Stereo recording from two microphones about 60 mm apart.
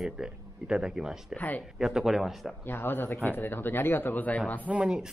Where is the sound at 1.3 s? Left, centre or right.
Left.